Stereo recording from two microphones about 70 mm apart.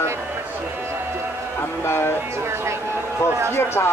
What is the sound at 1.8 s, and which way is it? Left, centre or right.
Speech, left.